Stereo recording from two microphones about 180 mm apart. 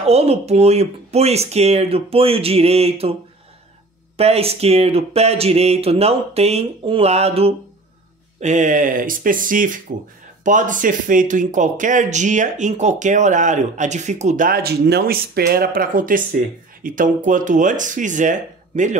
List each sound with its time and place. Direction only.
0.0 s speech: 35° right (ahead or behind)
4.2 s speech: 35° right (ahead or behind)